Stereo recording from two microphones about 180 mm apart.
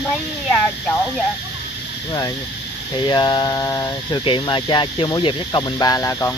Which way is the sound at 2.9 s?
25° left (ahead or behind).